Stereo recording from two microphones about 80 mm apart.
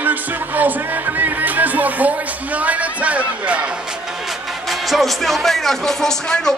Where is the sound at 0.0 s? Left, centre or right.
Right.